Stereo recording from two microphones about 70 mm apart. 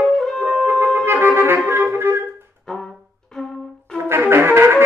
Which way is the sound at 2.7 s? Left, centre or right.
Centre.